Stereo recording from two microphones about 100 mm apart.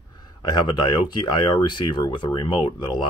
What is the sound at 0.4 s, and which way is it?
Speech, 50° left (ahead or behind).